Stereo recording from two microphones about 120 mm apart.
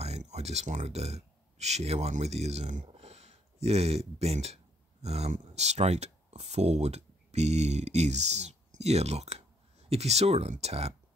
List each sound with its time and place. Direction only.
0.0 s speech: 65° right (ahead or behind)
2.9 s a sound: 60° right (ahead or behind)
5.0 s speech: 60° right (ahead or behind)